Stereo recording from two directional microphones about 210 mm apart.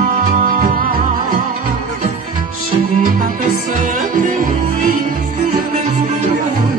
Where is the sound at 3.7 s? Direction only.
40° right (ahead or behind).